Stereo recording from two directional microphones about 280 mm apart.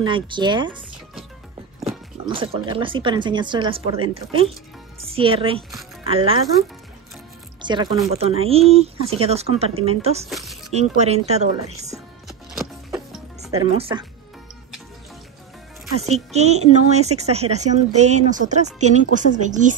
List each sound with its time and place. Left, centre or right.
0.0 s speech: centre
1.8 s a woman's voice: centre
7.6 s a woman's voice: centre
10.3 s music: centre
10.7 s a woman's voice: right
13.5 s a woman's voice: right
16.0 s a woman's voice: right